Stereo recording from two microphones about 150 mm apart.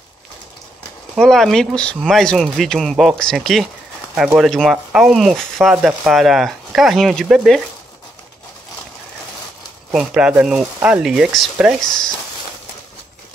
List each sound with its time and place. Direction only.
1.1 s speech: centre (ahead or behind)
9.9 s speech: 5° right (ahead or behind)
11.8 s speech: 30° left (ahead or behind)